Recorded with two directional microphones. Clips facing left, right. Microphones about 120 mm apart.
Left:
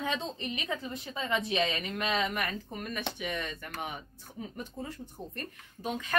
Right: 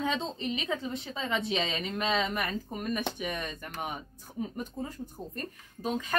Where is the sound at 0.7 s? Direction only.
Centre (ahead or behind).